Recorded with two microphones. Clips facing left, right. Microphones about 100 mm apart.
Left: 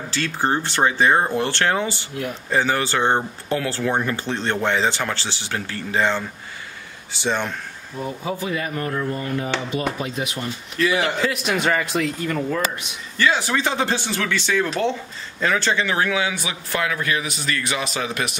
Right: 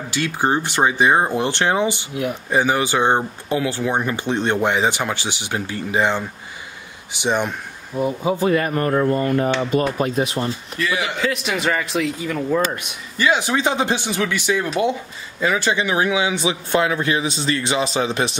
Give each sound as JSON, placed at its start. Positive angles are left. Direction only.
{"t": 0.1, "sound": "a man's voice", "side_deg": -15}
{"t": 8.5, "sound": "speech", "side_deg": -55}
{"t": 10.2, "sound": "speech", "side_deg": -35}
{"t": 10.8, "sound": "a man's voice", "side_deg": 0}
{"t": 13.2, "sound": "a man's voice", "side_deg": -20}